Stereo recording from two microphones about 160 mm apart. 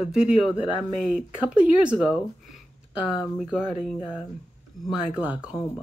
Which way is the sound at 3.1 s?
5° right (ahead or behind).